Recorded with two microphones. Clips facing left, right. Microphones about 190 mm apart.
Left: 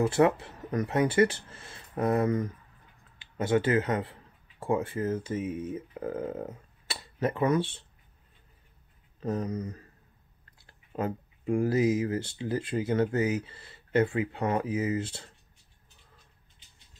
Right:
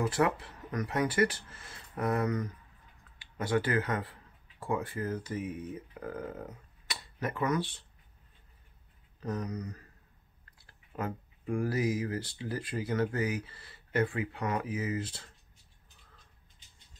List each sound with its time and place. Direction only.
0.0 s speech: 25° left (ahead or behind)
9.2 s speech: 25° left (ahead or behind)